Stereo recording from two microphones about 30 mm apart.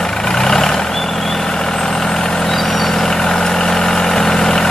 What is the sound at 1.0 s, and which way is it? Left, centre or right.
Vehicle, centre.